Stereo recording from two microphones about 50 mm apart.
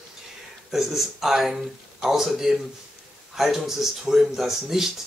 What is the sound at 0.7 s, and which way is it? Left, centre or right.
Speech, centre.